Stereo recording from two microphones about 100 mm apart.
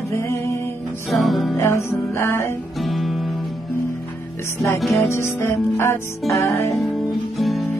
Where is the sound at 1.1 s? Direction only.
Centre (ahead or behind).